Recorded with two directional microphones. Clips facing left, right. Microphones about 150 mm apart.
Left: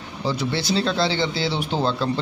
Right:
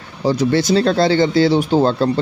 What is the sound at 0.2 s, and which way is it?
Speech, 45° right (ahead or behind).